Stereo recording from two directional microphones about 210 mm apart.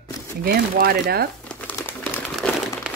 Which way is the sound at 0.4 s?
45° right (ahead or behind).